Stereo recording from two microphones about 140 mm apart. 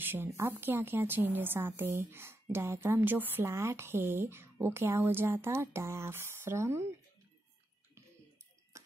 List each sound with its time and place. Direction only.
0.0 s a woman's voice: 15° right (ahead or behind)